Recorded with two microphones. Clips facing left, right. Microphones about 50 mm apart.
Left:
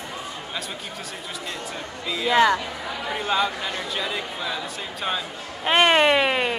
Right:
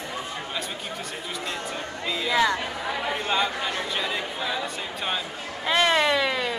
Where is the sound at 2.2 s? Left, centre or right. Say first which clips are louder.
Left 5 dB; left.